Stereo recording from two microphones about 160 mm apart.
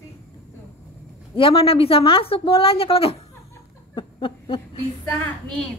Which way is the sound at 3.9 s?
35° left (ahead or behind).